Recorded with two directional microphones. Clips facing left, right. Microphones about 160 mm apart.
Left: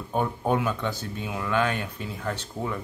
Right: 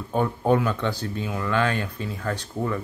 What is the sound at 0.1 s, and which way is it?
Speech, 10° left (ahead or behind).